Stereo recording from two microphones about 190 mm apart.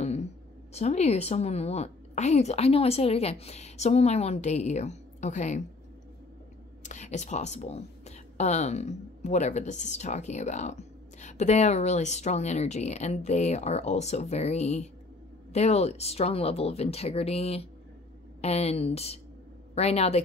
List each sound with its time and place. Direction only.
0.0 s a sound: 35° left (ahead or behind)
0.7 s speech: 35° left (ahead or behind)
6.8 s a woman's voice: 40° left (ahead or behind)